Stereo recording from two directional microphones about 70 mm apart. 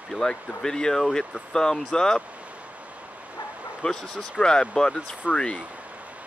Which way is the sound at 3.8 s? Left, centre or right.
Centre.